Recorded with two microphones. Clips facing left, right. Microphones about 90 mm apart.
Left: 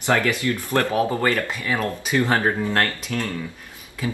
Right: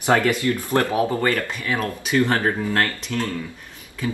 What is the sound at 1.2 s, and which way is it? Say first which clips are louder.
Speech: even; 15° left (ahead or behind).